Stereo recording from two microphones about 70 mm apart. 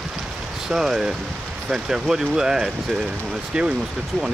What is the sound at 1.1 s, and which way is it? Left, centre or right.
Speech, centre.